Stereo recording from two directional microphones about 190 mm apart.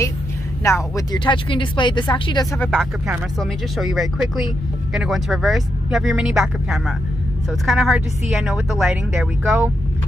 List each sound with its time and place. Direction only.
0.7 s speech: 15° left (ahead or behind)
2.6 s speech: centre (ahead or behind)
9.4 s speech: 15° right (ahead or behind)